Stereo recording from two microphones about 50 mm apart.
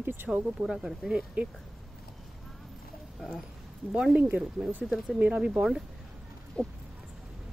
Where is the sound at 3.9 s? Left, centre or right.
Right.